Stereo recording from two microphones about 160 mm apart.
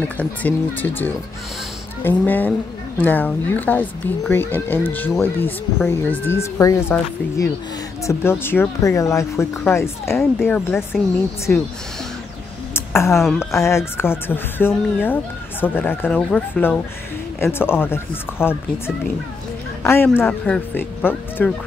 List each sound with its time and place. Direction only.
0.0 s speech: 10° left (ahead or behind)
12.7 s a sound: 15° left (ahead or behind)
13.4 s speech: 15° left (ahead or behind)